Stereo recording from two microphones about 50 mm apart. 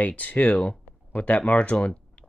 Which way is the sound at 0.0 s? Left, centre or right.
Left.